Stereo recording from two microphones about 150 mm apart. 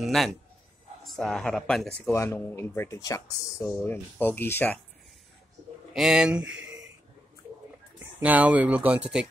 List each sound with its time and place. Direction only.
0.0 s speech: centre (ahead or behind)
2.0 s speech: 20° left (ahead or behind)
5.9 s speech: 5° right (ahead or behind)
8.2 s speech: 10° right (ahead or behind)